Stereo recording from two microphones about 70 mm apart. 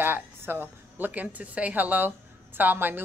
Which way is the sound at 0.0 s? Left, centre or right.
Right.